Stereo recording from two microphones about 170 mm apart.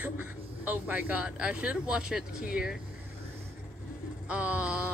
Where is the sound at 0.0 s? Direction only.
10° right (ahead or behind).